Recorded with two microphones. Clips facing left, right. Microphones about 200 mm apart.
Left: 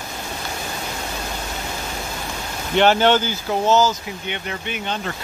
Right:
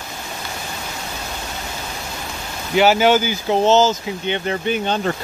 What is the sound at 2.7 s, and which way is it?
Speech, 5° right (ahead or behind).